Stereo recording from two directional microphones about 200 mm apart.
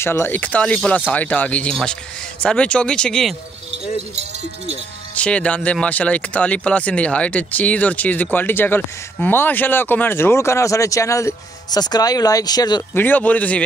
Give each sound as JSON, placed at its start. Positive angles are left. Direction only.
{"t": 0.0, "sound": "speech", "side_deg": 10}
{"t": 4.1, "sound": "speech", "side_deg": -35}
{"t": 5.1, "sound": "speech", "side_deg": 5}
{"t": 13.0, "sound": "speech", "side_deg": 10}